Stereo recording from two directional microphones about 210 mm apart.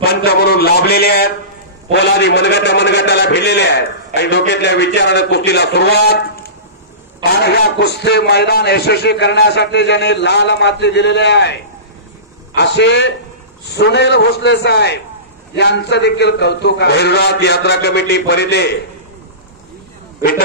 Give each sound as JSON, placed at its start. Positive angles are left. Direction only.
{"t": 0.0, "sound": "a man's voice", "side_deg": 50}
{"t": 12.5, "sound": "a man's voice", "side_deg": 55}